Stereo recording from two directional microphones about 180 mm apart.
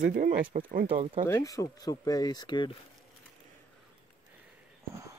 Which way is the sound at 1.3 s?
20° left (ahead or behind).